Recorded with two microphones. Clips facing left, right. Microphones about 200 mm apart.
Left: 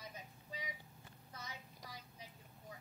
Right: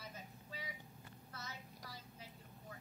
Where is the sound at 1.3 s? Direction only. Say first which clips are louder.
Even; 15° left (ahead or behind).